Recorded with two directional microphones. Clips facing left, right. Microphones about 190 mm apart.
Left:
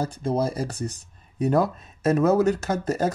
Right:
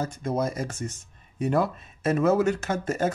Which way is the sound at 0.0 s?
30° left (ahead or behind).